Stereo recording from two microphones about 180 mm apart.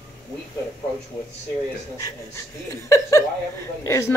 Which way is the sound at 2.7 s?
15° left (ahead or behind).